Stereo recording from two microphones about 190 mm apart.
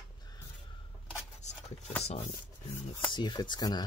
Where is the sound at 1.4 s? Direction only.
35° left (ahead or behind).